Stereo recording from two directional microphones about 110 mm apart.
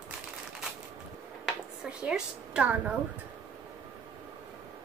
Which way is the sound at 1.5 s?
5° right (ahead or behind).